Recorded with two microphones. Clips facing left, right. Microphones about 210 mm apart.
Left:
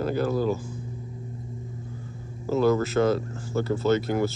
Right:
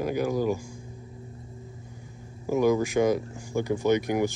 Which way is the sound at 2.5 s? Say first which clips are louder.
Left 1 dB; 15° right (ahead or behind).